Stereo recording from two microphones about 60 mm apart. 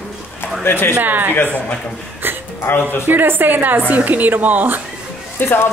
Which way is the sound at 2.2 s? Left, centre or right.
Right.